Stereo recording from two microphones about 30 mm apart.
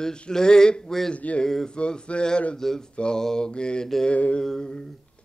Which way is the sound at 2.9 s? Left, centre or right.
Left.